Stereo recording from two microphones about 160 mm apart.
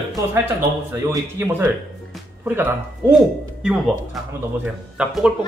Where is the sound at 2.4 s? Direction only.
15° right (ahead or behind).